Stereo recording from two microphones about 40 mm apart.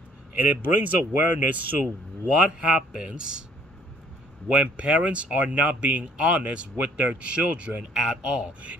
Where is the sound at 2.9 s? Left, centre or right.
Right.